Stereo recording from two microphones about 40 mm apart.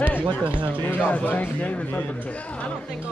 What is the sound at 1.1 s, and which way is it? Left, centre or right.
Speech, left.